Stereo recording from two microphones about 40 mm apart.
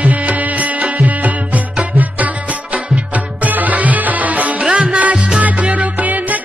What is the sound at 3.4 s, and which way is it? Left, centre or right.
Music, right.